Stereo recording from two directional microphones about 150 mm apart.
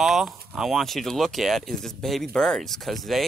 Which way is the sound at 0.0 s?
Centre (ahead or behind).